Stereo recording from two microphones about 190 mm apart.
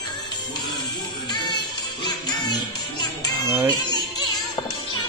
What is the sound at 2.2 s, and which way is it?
Music, 20° left (ahead or behind).